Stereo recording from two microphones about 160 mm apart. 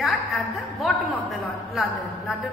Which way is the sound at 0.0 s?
Centre (ahead or behind).